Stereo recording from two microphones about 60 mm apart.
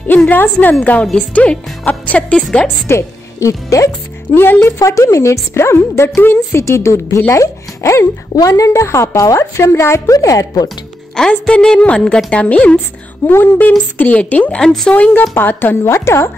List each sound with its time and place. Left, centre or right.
0.1 s a woman's voice: left
2.9 s speech: left
4.3 s a woman's voice: left
4.6 s a woman's voice: left
8.4 s a woman's voice: left
8.8 s a woman's voice: left
9.1 s a woman's voice: left
10.1 s a woman's voice: left
11.1 s a woman's voice: centre
13.3 s speech: left
14.6 s a woman's voice: centre
15.3 s a woman's voice: left